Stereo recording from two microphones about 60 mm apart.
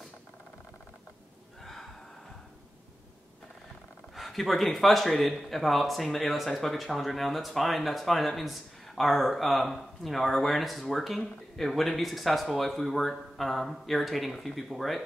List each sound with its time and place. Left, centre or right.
1.6 s gasp: centre
4.1 s speech: centre